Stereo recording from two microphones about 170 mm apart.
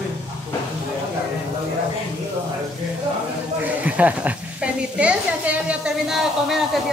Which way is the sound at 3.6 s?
10° right (ahead or behind).